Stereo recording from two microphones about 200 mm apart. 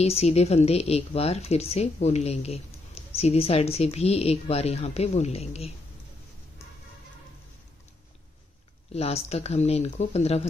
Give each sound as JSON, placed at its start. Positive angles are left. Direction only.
{"t": 0.0, "sound": "a woman's voice", "side_deg": 30}
{"t": 8.9, "sound": "a woman's voice", "side_deg": 30}